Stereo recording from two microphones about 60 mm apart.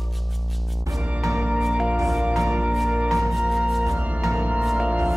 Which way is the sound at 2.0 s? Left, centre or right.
Centre.